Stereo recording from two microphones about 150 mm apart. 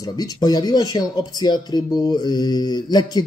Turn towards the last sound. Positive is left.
turn(degrees=30)  # may be behind; listen again after turning